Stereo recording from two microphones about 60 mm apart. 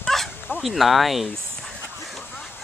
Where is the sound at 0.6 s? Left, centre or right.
Centre.